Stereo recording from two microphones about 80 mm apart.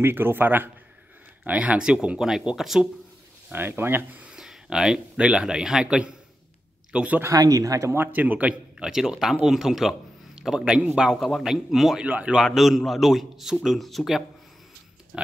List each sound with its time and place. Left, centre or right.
0.0 s a man's voice: right; by 2.9 s centre
3.5 s a man's voice: right
4.2 s speech: centre
7.2 s speech: right
7.9 s a man's voice: right; by 12.0 s centre
12.0 s a man's voice: centre
12.4 s a man's voice: centre